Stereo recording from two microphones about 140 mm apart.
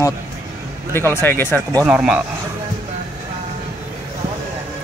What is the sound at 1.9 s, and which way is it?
Speech, 5° right (ahead or behind).